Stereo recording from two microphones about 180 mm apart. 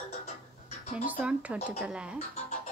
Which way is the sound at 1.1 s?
5° right (ahead or behind).